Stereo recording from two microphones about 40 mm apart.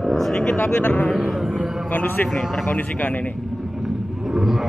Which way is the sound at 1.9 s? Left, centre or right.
Left.